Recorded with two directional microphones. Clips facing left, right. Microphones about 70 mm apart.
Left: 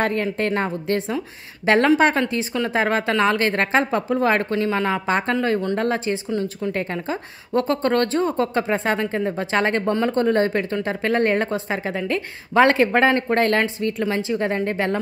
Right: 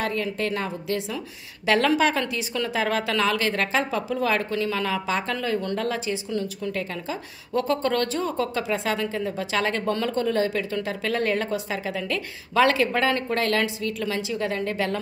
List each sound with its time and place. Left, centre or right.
0.0 s speech: left
9.8 s speech: left
10.1 s speech: left